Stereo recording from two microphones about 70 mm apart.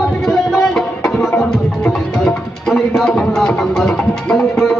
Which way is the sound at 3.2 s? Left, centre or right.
Centre.